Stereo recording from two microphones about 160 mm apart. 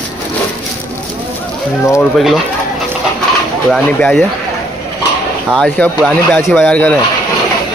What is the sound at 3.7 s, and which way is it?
Speech, 5° left (ahead or behind).